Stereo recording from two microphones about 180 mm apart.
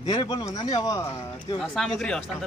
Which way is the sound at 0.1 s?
25° left (ahead or behind).